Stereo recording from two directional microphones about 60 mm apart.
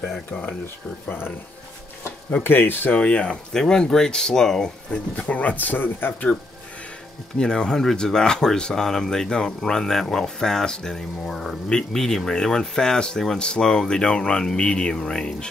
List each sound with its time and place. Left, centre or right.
1.0 s speech: left
2.4 s speech: left
3.0 s speech: centre
7.3 s speech: centre